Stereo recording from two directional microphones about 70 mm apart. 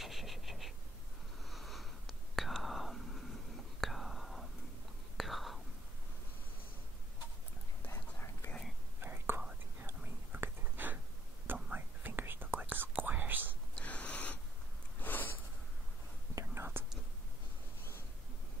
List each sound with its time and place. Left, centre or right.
0.0 s a sound: centre
1.5 s whispering: centre
7.8 s whispering: left
9.0 s whispering: right
13.7 s a sound: centre
16.3 s whispering: right